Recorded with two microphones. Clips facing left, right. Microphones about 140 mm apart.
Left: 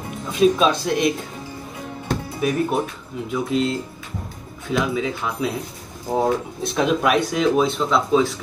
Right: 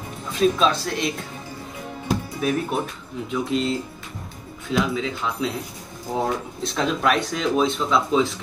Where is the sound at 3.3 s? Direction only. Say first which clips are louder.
Left 2 dB; centre (ahead or behind).